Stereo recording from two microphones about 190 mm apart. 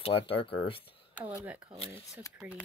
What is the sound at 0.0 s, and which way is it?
Speech, 30° left (ahead or behind).